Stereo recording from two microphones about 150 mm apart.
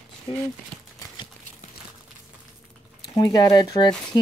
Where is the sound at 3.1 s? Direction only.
25° left (ahead or behind).